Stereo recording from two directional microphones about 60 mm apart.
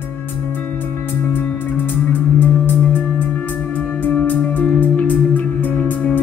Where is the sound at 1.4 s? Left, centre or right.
Left.